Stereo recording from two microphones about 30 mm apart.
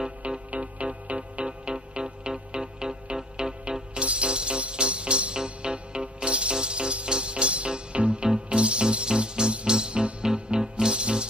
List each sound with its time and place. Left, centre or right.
0.5 s music: right
1.4 s music: right